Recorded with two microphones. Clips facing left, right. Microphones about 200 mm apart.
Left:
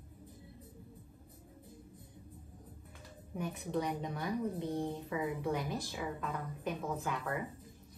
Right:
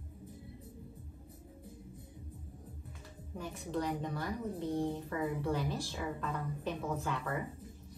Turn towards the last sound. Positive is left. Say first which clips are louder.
# right 1 dB
turn(degrees=5)  # may be behind; listen again after turning